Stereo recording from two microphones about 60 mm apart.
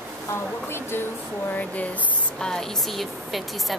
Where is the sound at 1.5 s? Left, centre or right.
Left.